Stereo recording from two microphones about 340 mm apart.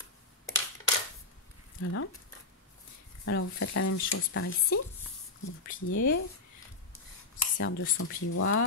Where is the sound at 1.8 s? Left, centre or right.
Left.